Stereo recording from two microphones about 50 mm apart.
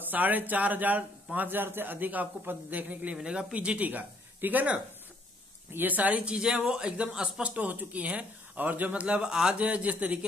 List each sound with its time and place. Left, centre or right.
0.1 s a man's voice: right
3.2 s speech: centre
3.5 s a man's voice: right
6.2 s a man's voice: centre; by 8.9 s right
8.9 s speech: right
9.6 s speech: right